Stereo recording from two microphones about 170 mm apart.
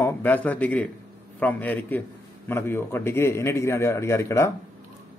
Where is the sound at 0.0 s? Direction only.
10° left (ahead or behind).